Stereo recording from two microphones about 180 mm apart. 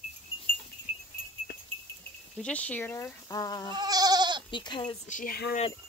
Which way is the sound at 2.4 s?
5° left (ahead or behind).